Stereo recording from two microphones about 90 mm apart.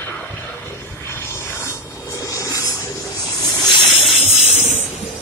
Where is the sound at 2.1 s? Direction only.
35° left (ahead or behind).